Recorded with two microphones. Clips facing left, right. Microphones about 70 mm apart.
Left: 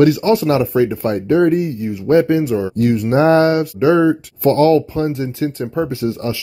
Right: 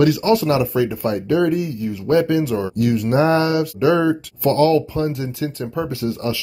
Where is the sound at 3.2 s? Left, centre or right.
Left.